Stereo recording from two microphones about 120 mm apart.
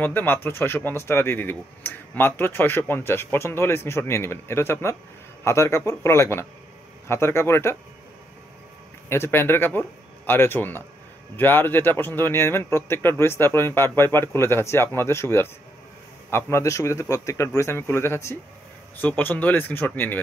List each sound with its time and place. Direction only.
0.0 s speech: 15° left (ahead or behind)
9.1 s a man's voice: 20° left (ahead or behind)